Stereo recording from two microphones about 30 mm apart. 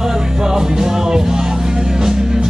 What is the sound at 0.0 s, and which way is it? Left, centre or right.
Music, centre.